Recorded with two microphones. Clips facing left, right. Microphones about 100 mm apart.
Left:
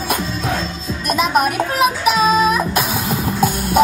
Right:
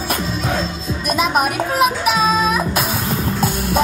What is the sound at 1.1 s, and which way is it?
Child singing, centre (ahead or behind).